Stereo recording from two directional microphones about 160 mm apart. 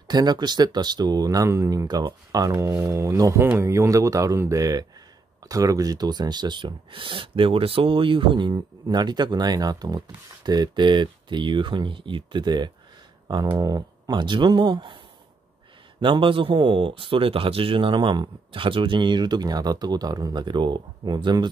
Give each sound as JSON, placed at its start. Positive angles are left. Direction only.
{"t": 0.1, "sound": "speech", "side_deg": -25}
{"t": 16.0, "sound": "a man's voice", "side_deg": -30}